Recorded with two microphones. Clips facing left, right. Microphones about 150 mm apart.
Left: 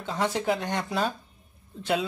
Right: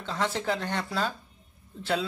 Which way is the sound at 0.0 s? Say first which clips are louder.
Left 2 dB; 15° left (ahead or behind).